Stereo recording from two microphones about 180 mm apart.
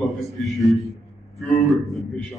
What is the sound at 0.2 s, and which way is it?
A man's voice, centre (ahead or behind).